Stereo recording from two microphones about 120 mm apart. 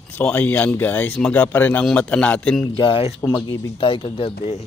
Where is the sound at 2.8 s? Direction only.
45° left (ahead or behind).